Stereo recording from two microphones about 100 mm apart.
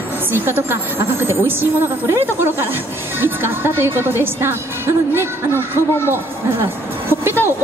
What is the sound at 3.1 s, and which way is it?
A woman's voice, 20° right (ahead or behind).